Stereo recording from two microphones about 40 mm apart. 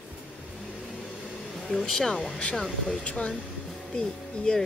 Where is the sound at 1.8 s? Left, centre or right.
Centre.